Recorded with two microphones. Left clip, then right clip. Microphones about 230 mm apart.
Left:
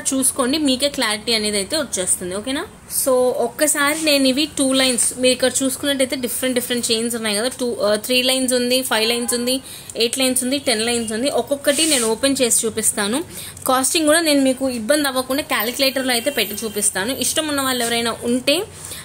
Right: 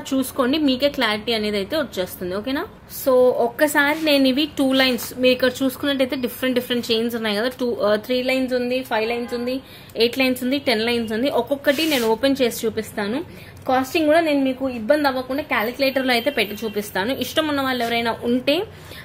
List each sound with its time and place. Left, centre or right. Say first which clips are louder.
0.1 s a woman's voice: even; centre
9.9 s a woman's voice: even; centre
15.9 s a woman's voice: even; centre